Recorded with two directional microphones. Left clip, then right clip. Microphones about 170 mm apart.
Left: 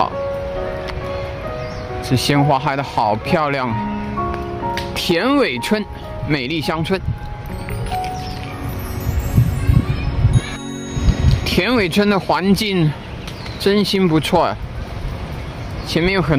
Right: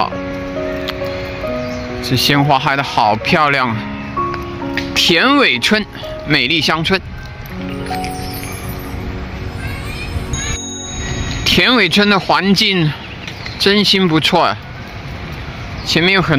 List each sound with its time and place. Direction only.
2.0 s speech: 5° left (ahead or behind)
4.9 s speech: centre (ahead or behind)
11.4 s speech: centre (ahead or behind)
15.9 s speech: 5° right (ahead or behind)